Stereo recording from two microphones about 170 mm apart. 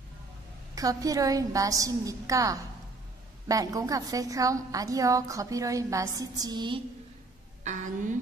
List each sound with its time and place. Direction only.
0.7 s a woman's voice: 20° right (ahead or behind)
7.6 s a woman's voice: 50° right (ahead or behind)